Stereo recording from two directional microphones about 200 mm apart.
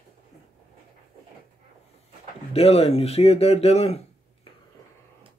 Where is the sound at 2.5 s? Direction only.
30° left (ahead or behind).